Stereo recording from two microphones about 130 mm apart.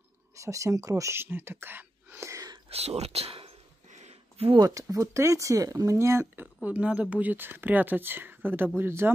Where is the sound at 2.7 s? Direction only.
50° right (ahead or behind).